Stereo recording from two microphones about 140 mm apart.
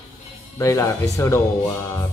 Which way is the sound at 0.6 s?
20° left (ahead or behind).